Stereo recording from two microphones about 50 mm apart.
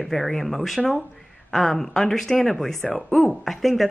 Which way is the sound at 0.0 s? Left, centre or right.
Centre.